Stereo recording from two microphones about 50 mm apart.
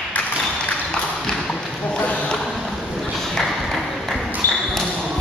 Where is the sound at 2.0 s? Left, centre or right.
Left.